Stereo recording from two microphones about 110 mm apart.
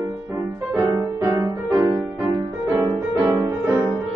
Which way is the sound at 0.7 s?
30° right (ahead or behind).